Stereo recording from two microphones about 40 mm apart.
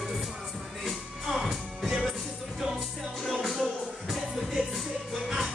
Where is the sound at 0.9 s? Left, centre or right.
Centre.